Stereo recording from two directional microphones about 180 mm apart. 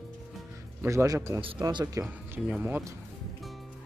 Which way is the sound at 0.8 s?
15° right (ahead or behind).